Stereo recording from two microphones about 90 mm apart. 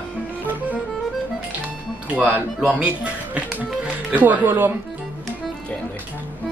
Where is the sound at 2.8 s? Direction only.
15° right (ahead or behind).